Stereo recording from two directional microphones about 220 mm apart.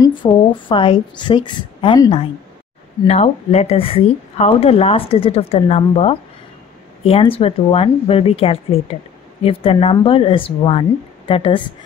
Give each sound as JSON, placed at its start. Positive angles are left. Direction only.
{"t": 0.0, "sound": "speech", "side_deg": 20}